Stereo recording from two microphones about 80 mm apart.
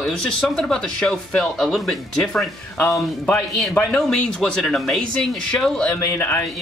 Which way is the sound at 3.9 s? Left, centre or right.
Centre.